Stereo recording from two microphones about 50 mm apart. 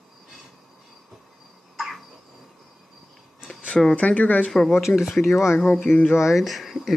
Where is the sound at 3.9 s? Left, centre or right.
Left.